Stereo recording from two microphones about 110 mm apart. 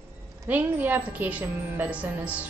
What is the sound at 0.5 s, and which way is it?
A woman's voice, 15° right (ahead or behind).